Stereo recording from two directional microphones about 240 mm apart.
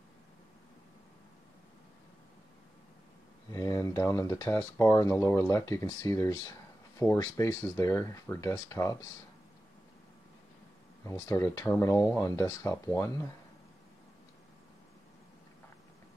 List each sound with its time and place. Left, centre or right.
3.5 s speech: centre
11.1 s speech: centre